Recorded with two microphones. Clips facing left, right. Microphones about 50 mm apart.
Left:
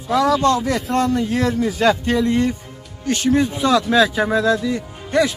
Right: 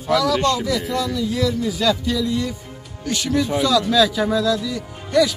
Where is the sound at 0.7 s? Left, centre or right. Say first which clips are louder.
Left 3 dB; left.